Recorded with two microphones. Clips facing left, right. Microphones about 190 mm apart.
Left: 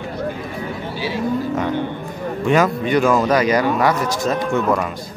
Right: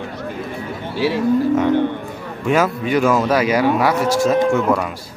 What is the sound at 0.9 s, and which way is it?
Cattle, 70° right (ahead or behind).